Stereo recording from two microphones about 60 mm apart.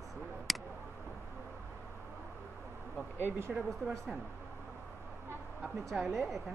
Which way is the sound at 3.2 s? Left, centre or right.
Right.